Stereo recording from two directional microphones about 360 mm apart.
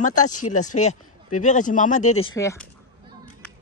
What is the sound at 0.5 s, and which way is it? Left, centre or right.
Speech, centre.